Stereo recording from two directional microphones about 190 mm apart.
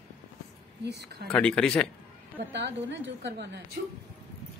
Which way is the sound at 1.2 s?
5° left (ahead or behind).